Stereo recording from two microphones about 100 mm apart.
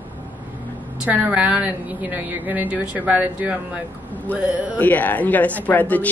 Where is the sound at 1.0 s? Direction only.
15° right (ahead or behind).